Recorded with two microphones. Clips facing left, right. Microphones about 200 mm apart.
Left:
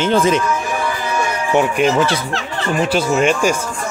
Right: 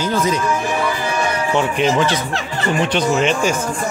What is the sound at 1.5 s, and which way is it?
Speech, 10° left (ahead or behind).